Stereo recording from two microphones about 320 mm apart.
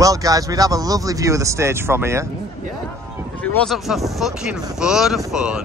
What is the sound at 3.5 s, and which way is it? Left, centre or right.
Speech, centre.